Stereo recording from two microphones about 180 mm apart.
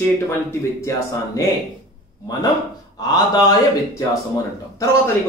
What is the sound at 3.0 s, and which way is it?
Speech, 20° left (ahead or behind).